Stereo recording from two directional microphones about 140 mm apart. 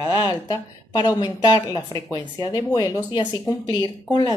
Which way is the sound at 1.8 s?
20° left (ahead or behind).